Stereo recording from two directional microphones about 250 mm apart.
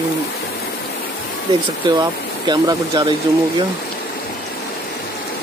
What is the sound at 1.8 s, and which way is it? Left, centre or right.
Speech, centre.